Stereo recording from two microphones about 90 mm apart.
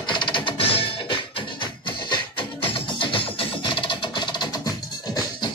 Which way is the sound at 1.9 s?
65° left (ahead or behind).